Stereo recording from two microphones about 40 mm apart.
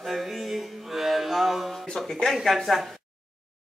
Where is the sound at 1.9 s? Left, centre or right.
Centre.